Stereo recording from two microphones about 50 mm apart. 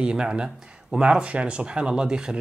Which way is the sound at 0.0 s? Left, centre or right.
Centre.